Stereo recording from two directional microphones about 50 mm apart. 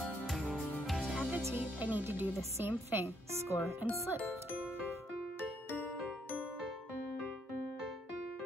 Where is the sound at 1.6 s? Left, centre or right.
Right.